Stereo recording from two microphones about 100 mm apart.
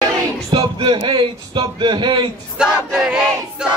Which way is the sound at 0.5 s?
50° right (ahead or behind).